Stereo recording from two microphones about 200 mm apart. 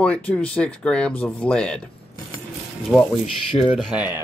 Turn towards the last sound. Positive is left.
turn(degrees=-5)  # may be behind; listen again after turning